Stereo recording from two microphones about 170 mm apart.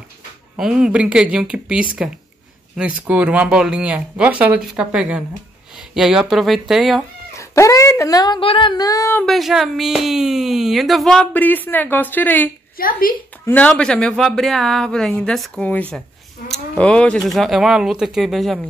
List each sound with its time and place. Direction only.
0.6 s speech: 5° right (ahead or behind)
3.1 s speech: 10° right (ahead or behind)
7.3 s speech: 20° left (ahead or behind)
9.2 s speech: centre (ahead or behind)
12.7 s a woman's voice: 55° left (ahead or behind)
13.5 s speech: 10° left (ahead or behind)